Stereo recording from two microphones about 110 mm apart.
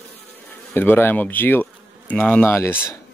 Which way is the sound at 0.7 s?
20° left (ahead or behind).